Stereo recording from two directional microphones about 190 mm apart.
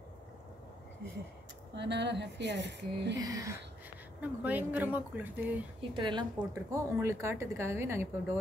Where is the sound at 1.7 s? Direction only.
65° right (ahead or behind).